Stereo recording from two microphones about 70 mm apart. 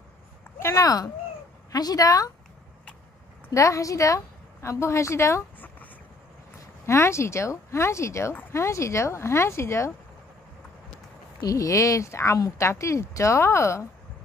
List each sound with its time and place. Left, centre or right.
0.7 s a woman's voice: left
3.5 s a woman's voice: left
6.9 s speech: left
11.4 s a woman's voice: left